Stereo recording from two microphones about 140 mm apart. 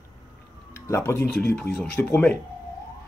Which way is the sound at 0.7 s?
20° left (ahead or behind).